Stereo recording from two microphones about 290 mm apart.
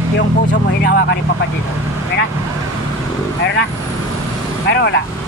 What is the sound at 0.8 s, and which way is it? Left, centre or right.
Speech, left.